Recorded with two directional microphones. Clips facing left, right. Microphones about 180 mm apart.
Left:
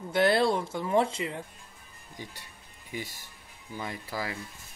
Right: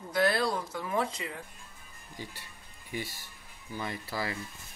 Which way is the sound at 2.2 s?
15° left (ahead or behind).